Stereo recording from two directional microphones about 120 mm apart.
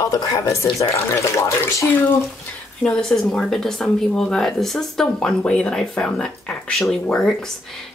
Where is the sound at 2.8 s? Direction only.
5° left (ahead or behind).